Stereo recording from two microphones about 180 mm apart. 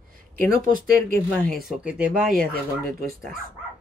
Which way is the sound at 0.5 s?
50° right (ahead or behind).